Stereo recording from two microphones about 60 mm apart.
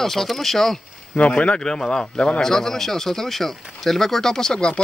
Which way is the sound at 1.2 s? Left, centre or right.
Centre.